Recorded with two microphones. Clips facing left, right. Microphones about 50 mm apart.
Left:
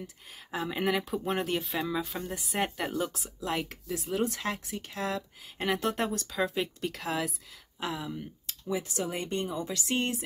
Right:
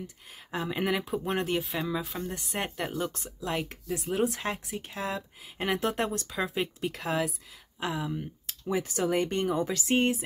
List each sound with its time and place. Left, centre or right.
0.5 s speech: centre
8.6 s speech: right
9.8 s speech: right